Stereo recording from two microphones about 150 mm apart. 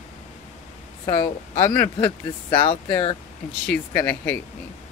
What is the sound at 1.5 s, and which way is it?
Speech, 20° left (ahead or behind).